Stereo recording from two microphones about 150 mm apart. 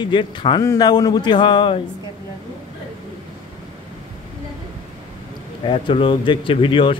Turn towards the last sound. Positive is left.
turn(degrees=35)  # may be behind; listen again after turning